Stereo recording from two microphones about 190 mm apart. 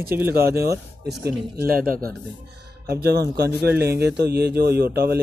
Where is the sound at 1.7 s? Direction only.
50° right (ahead or behind).